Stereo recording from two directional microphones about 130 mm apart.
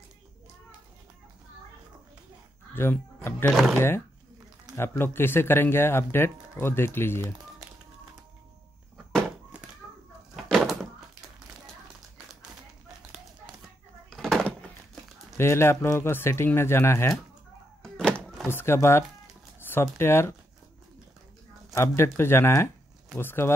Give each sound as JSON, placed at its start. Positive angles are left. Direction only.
{"t": 2.7, "sound": "speech", "side_deg": 15}
{"t": 4.7, "sound": "speech", "side_deg": 15}
{"t": 8.9, "sound": "a sound", "side_deg": -5}
{"t": 10.3, "sound": "bird", "side_deg": -5}
{"t": 14.1, "sound": "a sound", "side_deg": 0}
{"t": 15.3, "sound": "speech", "side_deg": 20}
{"t": 17.8, "sound": "music", "side_deg": 5}
{"t": 18.2, "sound": "door", "side_deg": 0}
{"t": 18.5, "sound": "speech", "side_deg": 20}
{"t": 21.7, "sound": "speech", "side_deg": 20}